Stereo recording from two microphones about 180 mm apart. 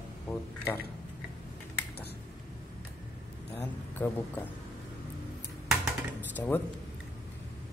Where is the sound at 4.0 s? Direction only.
10° left (ahead or behind).